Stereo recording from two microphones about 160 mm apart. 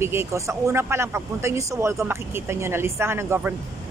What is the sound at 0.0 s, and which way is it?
A woman's voice, 15° right (ahead or behind).